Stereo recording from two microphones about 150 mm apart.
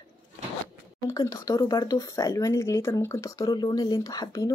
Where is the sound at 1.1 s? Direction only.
25° left (ahead or behind).